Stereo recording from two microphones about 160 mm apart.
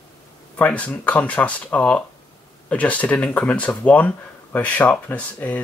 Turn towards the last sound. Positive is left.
turn(degrees=10)  # may be behind; listen again after turning